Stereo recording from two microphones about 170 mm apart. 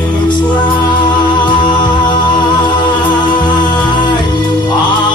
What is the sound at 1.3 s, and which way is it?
Music, 25° left (ahead or behind).